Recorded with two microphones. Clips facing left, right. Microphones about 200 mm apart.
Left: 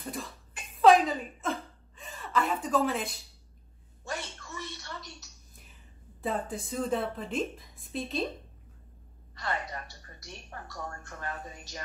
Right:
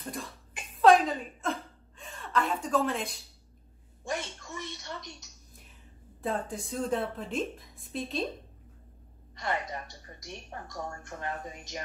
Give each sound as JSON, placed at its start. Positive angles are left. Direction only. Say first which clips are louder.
{"t": 0.0, "sound": "speech", "louder": "left 1 dB", "side_deg": 0}
{"t": 0.7, "sound": "hiccup", "louder": "even", "side_deg": 0}
{"t": 4.0, "sound": "a sound", "louder": "right 3 dB", "side_deg": -15}
{"t": 6.2, "sound": "a woman's voice", "louder": "even", "side_deg": 0}
{"t": 9.3, "sound": "a woman's voice", "louder": "right 2 dB", "side_deg": -15}